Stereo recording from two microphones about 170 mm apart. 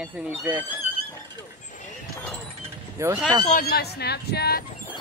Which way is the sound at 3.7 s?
70° left (ahead or behind).